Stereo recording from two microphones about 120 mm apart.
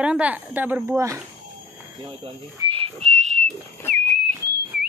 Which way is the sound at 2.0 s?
40° right (ahead or behind).